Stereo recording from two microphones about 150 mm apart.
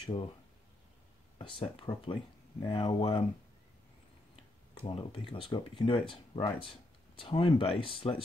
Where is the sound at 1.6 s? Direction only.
35° left (ahead or behind).